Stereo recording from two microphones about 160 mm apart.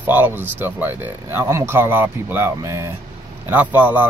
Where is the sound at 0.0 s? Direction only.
10° right (ahead or behind).